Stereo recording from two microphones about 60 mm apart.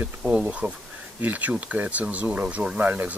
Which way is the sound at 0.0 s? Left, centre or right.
Right.